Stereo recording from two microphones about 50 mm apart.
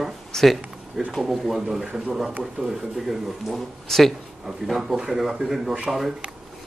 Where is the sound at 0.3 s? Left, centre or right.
Centre.